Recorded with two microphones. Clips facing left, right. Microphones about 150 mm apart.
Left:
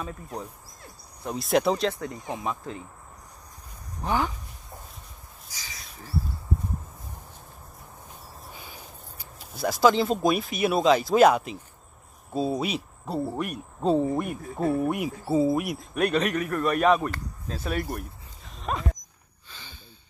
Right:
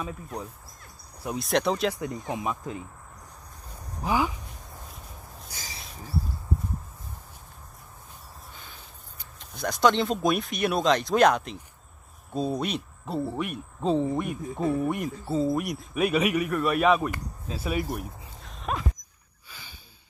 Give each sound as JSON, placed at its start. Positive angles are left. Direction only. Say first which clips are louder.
{"t": 1.2, "sound": "speech", "louder": "left 2 dB", "side_deg": 0}
{"t": 1.9, "sound": "speech", "louder": "right 1 dB", "side_deg": -15}
{"t": 4.0, "sound": "speech", "louder": "right 1 dB", "side_deg": -5}
{"t": 5.5, "sound": "a sound", "louder": "right 2 dB", "side_deg": -60}
{"t": 9.2, "sound": "speech", "louder": "left 3 dB", "side_deg": 5}
{"t": 17.5, "sound": "a sound", "louder": "right 1 dB", "side_deg": -5}